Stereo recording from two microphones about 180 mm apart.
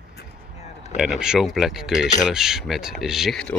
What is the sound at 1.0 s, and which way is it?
Speech, 5° right (ahead or behind).